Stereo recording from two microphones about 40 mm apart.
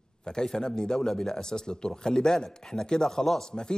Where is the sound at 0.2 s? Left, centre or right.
Centre.